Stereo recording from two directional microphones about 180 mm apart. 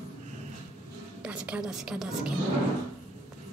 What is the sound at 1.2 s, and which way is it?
A woman's voice, 5° right (ahead or behind).